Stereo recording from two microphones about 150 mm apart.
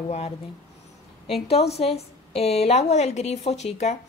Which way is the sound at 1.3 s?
40° left (ahead or behind).